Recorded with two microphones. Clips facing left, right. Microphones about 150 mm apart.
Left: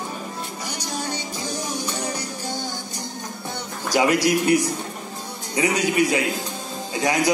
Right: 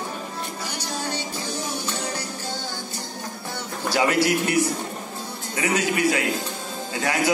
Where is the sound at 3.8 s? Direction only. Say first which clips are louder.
Left 2 dB; 15° left (ahead or behind).